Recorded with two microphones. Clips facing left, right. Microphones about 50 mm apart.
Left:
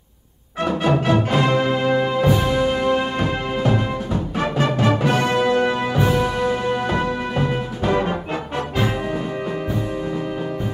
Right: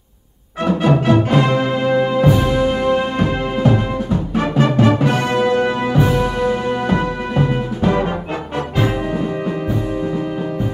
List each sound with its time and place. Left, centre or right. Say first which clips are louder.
0.7 s music: right 4 dB; centre